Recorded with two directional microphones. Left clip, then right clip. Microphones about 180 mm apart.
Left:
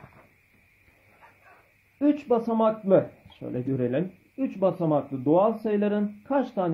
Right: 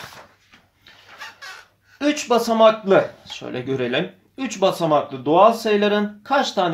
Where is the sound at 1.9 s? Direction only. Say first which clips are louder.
Right 5 dB; 30° left (ahead or behind).